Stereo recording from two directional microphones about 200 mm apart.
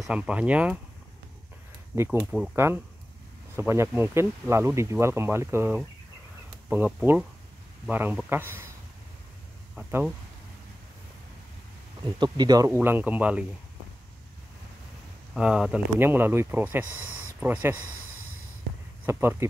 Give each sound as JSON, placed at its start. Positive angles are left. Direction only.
{"t": 0.0, "sound": "speech", "side_deg": -5}
{"t": 2.3, "sound": "speech", "side_deg": -5}
{"t": 9.8, "sound": "speech", "side_deg": -5}
{"t": 12.2, "sound": "speech", "side_deg": -20}
{"t": 12.8, "sound": "speech", "side_deg": -10}
{"t": 15.3, "sound": "speech", "side_deg": -5}
{"t": 19.0, "sound": "speech", "side_deg": -10}